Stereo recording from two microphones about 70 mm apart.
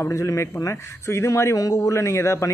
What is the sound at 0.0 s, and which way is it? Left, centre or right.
A man's voice, left.